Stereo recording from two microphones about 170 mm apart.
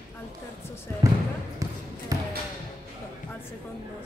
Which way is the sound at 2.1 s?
20° right (ahead or behind).